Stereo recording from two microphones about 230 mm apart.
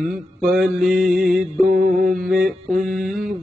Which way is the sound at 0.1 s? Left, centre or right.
Centre.